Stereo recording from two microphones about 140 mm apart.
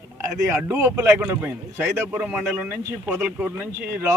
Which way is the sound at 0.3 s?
15° right (ahead or behind).